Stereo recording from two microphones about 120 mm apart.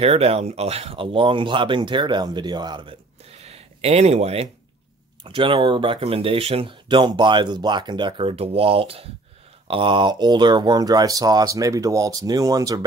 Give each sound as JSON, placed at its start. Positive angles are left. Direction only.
{"t": 0.0, "sound": "speech", "side_deg": -55}
{"t": 5.2, "sound": "speech", "side_deg": -45}